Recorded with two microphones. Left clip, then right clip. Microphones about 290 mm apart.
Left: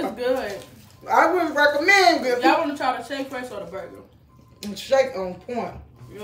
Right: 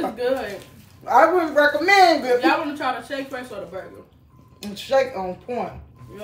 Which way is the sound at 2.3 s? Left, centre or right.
Centre.